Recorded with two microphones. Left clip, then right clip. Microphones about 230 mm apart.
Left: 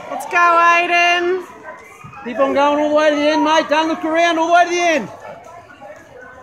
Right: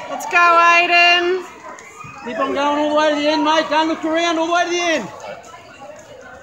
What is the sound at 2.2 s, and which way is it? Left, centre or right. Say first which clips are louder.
A man's voice: left 4 dB; left.